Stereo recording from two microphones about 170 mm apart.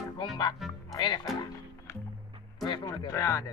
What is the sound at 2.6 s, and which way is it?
Music, 25° left (ahead or behind).